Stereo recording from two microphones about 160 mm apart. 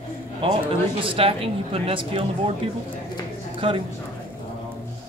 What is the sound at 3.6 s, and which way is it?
Speech, 35° right (ahead or behind).